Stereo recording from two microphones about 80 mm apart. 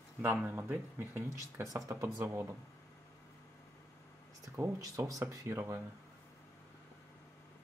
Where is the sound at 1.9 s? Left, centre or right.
Right.